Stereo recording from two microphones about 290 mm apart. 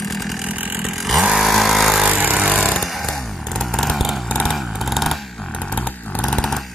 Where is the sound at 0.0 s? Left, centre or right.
Centre.